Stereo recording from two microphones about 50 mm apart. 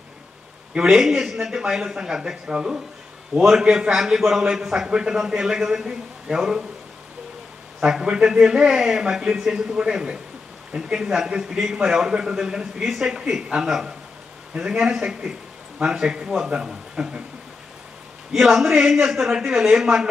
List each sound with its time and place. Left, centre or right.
0.7 s a man's voice: centre
7.8 s a man's voice: centre
18.3 s a man's voice: centre